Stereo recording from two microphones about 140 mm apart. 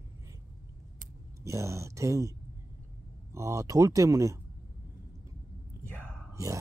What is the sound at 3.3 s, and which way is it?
Speech, 20° right (ahead or behind).